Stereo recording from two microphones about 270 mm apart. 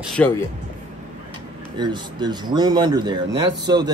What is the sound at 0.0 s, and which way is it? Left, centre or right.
Speech, centre.